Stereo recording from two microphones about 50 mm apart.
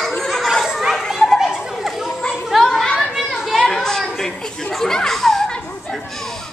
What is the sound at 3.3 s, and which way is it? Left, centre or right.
Children playing, centre.